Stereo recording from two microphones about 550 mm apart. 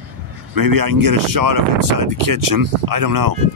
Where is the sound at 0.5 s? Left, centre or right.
Right.